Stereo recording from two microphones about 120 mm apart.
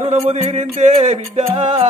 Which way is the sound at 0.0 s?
65° right (ahead or behind).